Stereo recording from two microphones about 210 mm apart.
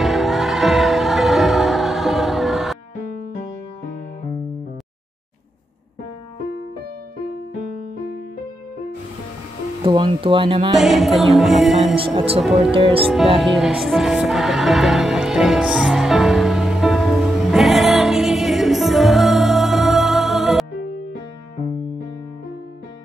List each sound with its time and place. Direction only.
0.0 s music: centre (ahead or behind)
9.8 s speech: 25° right (ahead or behind)
10.7 s music: centre (ahead or behind)
11.9 s music: 25° right (ahead or behind)
13.4 s music: centre (ahead or behind)